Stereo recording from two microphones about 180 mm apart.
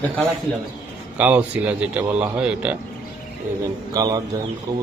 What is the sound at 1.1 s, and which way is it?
A man's voice, 10° right (ahead or behind).